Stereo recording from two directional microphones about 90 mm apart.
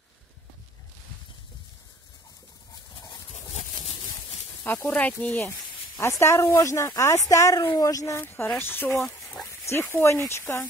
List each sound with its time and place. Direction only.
4.8 s speech: 15° left (ahead or behind)
5.9 s speech: 30° left (ahead or behind)
8.2 s speech: 25° left (ahead or behind)